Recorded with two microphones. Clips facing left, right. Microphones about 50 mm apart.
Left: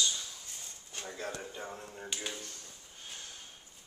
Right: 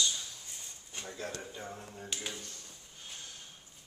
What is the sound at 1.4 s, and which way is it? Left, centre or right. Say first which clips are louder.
A man's voice: left 1 dB; centre.